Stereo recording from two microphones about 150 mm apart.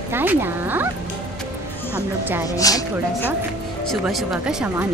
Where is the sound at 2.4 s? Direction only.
25° left (ahead or behind).